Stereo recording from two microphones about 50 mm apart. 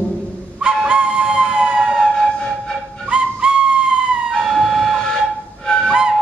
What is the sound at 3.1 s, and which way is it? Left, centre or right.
Whistle, centre.